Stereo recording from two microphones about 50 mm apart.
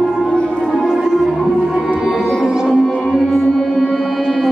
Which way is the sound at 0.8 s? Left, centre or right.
Centre.